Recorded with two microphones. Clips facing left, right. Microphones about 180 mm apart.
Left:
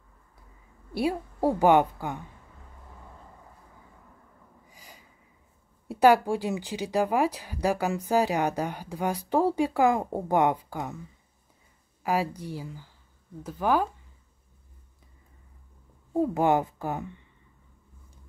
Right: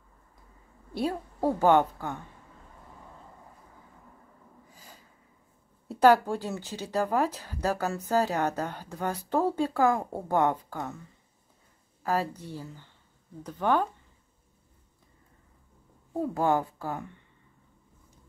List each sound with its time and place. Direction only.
0.9 s speech: 10° left (ahead or behind)
4.6 s a sound: 15° left (ahead or behind)
5.9 s speech: 10° left (ahead or behind)
12.0 s a woman's voice: 10° left (ahead or behind)
16.2 s a woman's voice: 20° left (ahead or behind)